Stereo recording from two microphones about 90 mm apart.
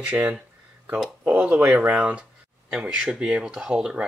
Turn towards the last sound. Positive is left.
turn(degrees=-10)  # may be behind; listen again after turning